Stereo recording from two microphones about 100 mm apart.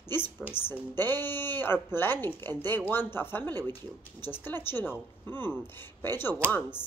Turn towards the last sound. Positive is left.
turn(degrees=20)  # may be behind; listen again after turning